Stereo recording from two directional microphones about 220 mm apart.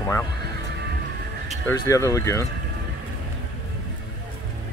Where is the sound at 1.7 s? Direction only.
15° left (ahead or behind).